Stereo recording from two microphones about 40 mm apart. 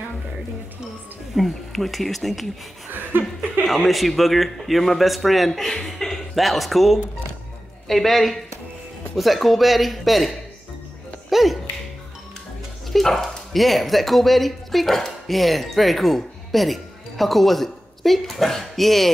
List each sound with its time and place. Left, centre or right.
1.3 s a man's voice: centre
2.9 s chuckle: right
3.6 s a man's voice: centre
6.3 s a man's voice: centre
12.8 s speech: centre